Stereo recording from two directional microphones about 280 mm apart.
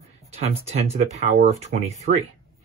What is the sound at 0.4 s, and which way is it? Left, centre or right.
Speech, right.